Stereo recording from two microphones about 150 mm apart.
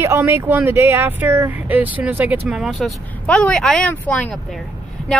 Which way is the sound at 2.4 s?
Centre (ahead or behind).